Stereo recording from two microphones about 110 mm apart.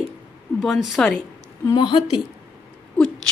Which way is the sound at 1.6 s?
40° left (ahead or behind).